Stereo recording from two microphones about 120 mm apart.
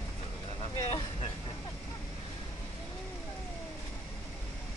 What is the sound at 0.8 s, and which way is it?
Vehicle, 50° left (ahead or behind).